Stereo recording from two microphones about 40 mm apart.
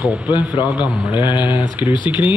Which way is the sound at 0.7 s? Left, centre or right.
Right.